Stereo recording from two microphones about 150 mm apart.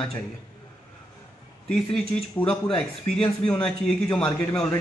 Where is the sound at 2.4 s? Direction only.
35° left (ahead or behind).